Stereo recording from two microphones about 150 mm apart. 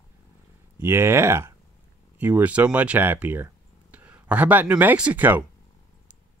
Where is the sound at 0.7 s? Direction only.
15° right (ahead or behind).